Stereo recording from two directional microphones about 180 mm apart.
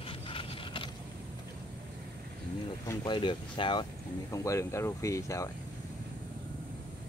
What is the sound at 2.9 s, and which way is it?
Speech, 20° left (ahead or behind).